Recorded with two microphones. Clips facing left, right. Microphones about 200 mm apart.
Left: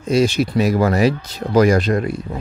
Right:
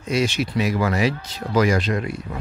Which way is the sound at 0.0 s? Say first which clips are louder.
Left 6 dB; 35° left (ahead or behind).